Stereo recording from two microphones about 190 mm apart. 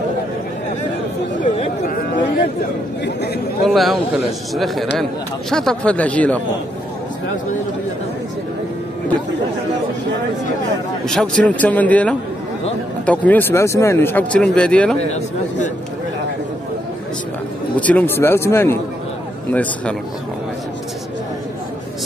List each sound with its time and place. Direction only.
1.4 s chatter: 45° left (ahead or behind)
3.6 s a man's voice: centre (ahead or behind)
11.1 s speech: 5° left (ahead or behind)
17.7 s speech: 10° left (ahead or behind)